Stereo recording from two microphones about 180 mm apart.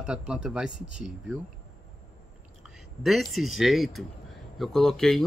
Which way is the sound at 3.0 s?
Centre (ahead or behind).